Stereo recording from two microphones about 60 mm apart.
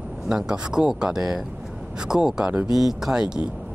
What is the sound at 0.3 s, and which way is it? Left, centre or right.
Speech, centre.